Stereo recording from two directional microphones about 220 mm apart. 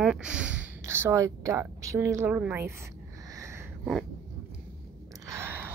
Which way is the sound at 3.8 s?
Centre (ahead or behind).